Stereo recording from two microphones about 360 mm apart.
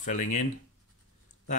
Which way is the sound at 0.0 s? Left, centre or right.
Left.